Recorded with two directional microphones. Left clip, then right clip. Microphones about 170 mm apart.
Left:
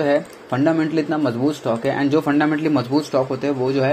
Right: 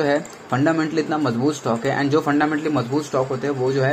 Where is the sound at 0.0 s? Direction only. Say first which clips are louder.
Left 2 dB; 15° left (ahead or behind).